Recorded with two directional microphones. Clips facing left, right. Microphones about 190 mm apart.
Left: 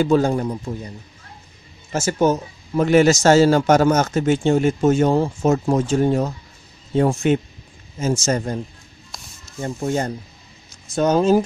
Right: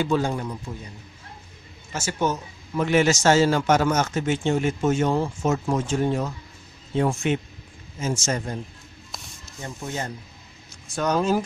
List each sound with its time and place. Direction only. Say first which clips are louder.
0.0 s a man's voice: left 6 dB; 40° left (ahead or behind)
1.9 s a man's voice: left 7 dB; 40° left (ahead or behind)
9.6 s speech: left 9 dB; 50° left (ahead or behind)
11.0 s speech: left 6 dB; 25° left (ahead or behind)